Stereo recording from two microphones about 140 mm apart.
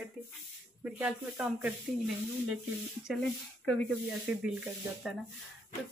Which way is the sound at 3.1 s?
5° left (ahead or behind).